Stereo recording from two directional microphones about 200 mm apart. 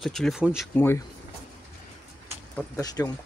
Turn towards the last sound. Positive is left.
turn(degrees=20)  # may be behind; listen again after turning